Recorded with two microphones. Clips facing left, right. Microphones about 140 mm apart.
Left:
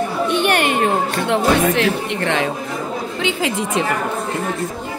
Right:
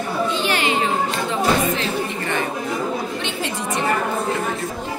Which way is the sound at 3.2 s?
90° left.